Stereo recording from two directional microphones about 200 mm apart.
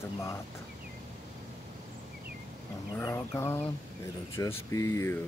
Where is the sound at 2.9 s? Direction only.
15° left (ahead or behind).